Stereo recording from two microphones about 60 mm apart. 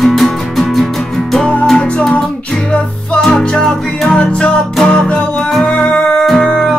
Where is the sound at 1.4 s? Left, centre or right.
Left.